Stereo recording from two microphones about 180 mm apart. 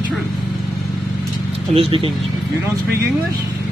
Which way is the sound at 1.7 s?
30° right (ahead or behind).